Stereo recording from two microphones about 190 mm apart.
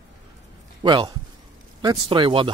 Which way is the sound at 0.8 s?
25° right (ahead or behind).